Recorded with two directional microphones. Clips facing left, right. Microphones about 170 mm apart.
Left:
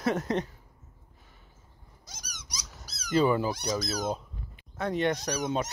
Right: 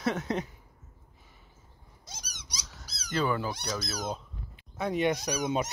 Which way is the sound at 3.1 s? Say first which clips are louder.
Left 5 dB; 10° left (ahead or behind).